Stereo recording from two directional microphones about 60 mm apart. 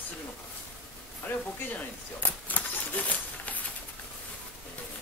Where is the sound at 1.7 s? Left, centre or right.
Left.